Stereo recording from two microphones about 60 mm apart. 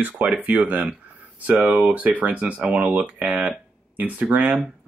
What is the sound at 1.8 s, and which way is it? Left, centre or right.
Speech, right.